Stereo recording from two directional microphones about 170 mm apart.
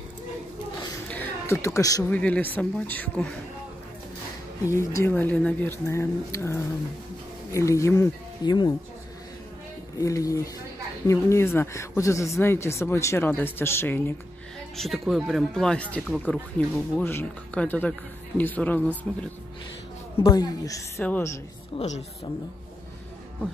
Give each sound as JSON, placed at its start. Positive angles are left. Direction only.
{"t": 1.0, "sound": "a sound", "side_deg": 10}
{"t": 2.0, "sound": "speech", "side_deg": 10}
{"t": 4.6, "sound": "speech", "side_deg": 15}
{"t": 9.9, "sound": "speech", "side_deg": 20}
{"t": 14.8, "sound": "speech", "side_deg": 0}
{"t": 20.2, "sound": "speech", "side_deg": 20}
{"t": 21.7, "sound": "a woman's voice", "side_deg": 40}